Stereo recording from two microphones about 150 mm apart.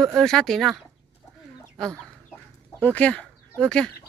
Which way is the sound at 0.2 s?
5° left (ahead or behind).